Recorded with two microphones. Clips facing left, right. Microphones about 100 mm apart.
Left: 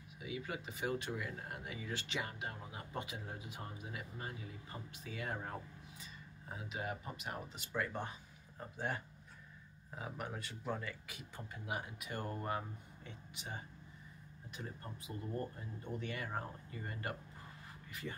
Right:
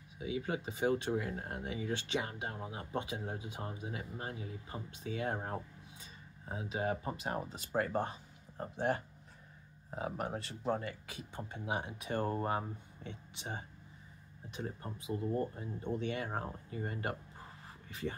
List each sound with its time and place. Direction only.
0.2 s speech: 30° right (ahead or behind)
6.5 s speech: 30° right (ahead or behind)